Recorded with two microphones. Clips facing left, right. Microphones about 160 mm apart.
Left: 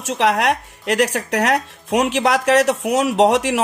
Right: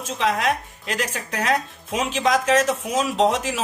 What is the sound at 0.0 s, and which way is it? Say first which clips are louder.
Speech: left 5 dB; 70° left (ahead or behind).